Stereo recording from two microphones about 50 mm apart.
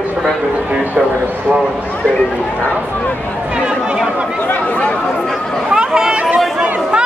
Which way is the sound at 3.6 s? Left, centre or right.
Centre.